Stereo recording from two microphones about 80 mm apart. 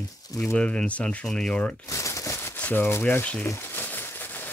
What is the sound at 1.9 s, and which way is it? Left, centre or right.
Crumpling, left.